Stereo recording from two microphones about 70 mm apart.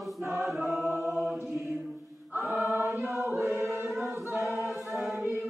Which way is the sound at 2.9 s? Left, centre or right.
Right.